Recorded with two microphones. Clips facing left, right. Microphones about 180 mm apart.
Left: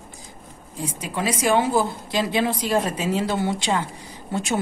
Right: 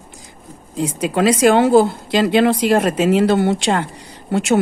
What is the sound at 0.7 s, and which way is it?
A woman's voice, 80° right.